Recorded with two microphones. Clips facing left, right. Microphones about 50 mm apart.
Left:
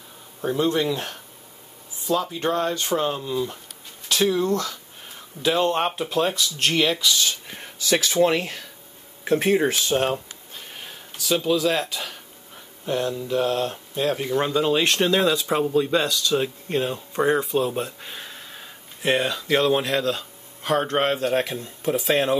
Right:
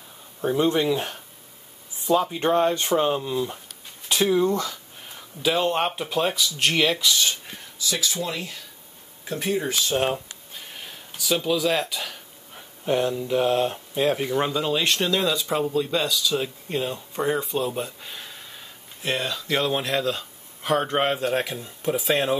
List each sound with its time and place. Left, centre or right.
0.6 s speech: centre
3.1 s speech: centre
5.0 s speech: centre
7.9 s speech: left
9.9 s a sound: centre
12.5 s speech: centre
19.4 s speech: centre